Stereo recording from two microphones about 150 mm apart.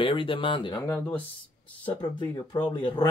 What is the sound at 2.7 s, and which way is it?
Speech, 30° left (ahead or behind).